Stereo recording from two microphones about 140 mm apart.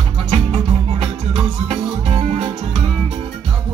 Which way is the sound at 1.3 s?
45° right (ahead or behind).